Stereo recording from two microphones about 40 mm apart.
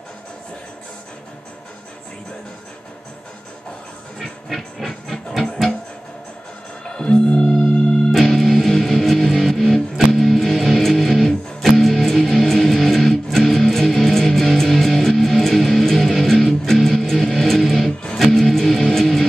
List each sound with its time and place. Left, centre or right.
4.2 s a sound: centre
5.5 s guitar: centre
6.9 s music: left
8.1 s music: centre